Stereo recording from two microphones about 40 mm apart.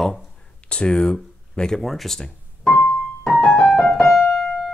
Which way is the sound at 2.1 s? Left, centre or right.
Centre.